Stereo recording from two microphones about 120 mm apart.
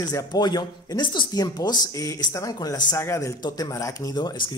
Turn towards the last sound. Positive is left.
turn(degrees=40)  # may be behind; listen again after turning